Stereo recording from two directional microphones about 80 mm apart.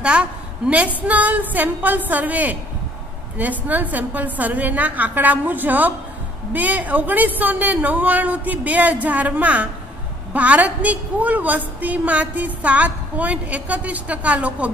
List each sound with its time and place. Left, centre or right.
0.0 s a woman's voice: centre